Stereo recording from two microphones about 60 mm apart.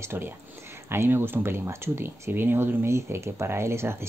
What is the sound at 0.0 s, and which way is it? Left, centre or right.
Speech, right.